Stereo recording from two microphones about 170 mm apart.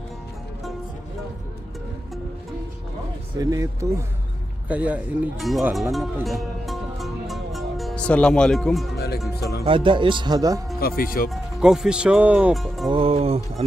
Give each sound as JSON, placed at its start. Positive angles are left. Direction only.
{"t": 3.3, "sound": "speech", "side_deg": -20}
{"t": 4.6, "sound": "speech", "side_deg": -10}
{"t": 6.2, "sound": "music", "side_deg": 0}
{"t": 8.9, "sound": "speech", "side_deg": 70}
{"t": 9.7, "sound": "speech", "side_deg": -30}
{"t": 10.8, "sound": "speech", "side_deg": 60}
{"t": 11.2, "sound": "speech", "side_deg": -5}
{"t": 12.9, "sound": "music", "side_deg": -35}